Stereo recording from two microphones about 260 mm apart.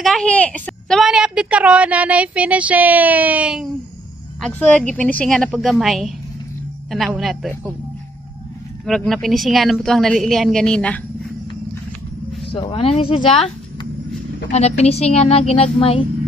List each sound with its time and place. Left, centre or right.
0.0 s a woman's voice: centre
8.8 s a woman's voice: centre
12.5 s a woman's voice: left
14.5 s a woman's voice: left